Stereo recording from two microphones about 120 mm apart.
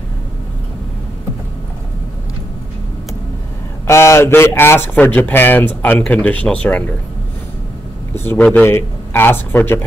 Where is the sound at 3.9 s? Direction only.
20° left (ahead or behind).